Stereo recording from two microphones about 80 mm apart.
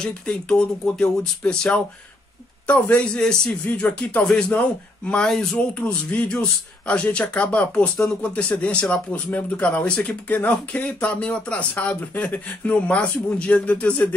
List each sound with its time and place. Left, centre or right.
0.0 s speech: centre